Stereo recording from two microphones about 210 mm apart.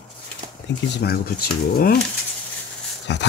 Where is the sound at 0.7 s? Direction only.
50° left (ahead or behind).